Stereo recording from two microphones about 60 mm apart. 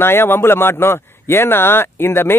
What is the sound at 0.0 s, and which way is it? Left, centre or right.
Speech, left.